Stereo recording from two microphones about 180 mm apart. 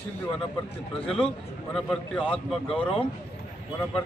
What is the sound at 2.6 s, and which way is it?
Speech, 30° left (ahead or behind).